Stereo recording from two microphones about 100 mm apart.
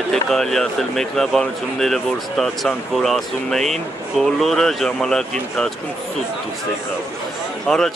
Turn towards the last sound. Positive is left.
turn(degrees=5)  # may be behind; listen again after turning